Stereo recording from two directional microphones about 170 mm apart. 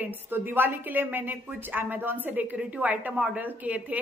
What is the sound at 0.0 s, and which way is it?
A woman's voice, 10° right (ahead or behind).